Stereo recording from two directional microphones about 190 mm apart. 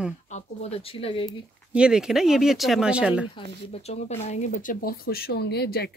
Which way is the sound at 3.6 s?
35° left (ahead or behind).